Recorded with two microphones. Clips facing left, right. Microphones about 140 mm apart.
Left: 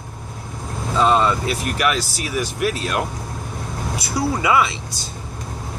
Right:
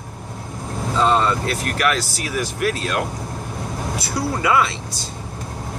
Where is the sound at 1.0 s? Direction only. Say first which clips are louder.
Left 1 dB; 10° left (ahead or behind).